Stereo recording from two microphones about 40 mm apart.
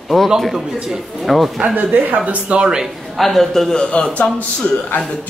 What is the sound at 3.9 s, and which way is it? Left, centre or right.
Speech, left.